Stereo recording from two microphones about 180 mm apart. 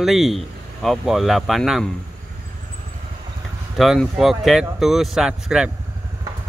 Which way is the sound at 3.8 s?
Centre (ahead or behind).